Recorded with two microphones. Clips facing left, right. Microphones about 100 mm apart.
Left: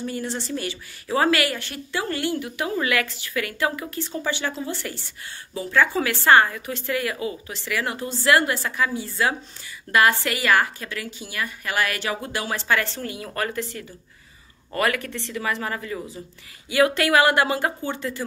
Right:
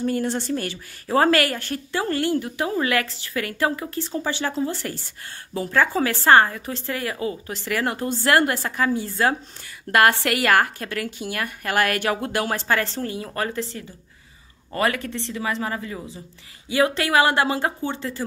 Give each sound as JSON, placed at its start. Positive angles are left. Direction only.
{"t": 0.0, "sound": "a woman's voice", "side_deg": -50}